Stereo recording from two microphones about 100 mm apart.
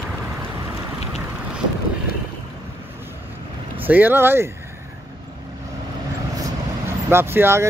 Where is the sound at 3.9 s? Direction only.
20° right (ahead or behind).